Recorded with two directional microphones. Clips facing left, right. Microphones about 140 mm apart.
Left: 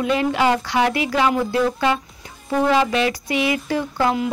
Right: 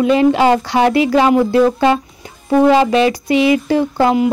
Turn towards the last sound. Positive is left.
turn(degrees=-25)  # may be behind; listen again after turning